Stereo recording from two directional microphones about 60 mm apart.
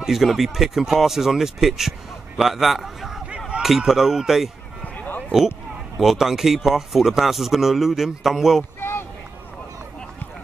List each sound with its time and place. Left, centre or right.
0.0 s speech: centre
4.8 s a sound: left
5.9 s speech: centre